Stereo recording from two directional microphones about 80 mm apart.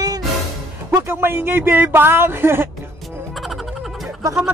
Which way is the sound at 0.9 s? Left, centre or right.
Right.